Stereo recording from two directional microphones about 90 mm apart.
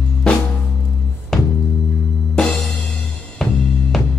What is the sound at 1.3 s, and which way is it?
Music, 5° left (ahead or behind).